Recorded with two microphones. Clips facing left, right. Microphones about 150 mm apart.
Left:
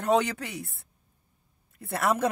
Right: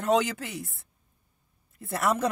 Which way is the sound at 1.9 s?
55° left (ahead or behind).